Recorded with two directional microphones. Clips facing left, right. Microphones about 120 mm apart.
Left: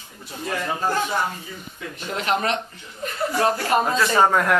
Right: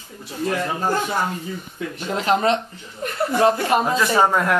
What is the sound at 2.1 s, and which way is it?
Speech, 25° right (ahead or behind).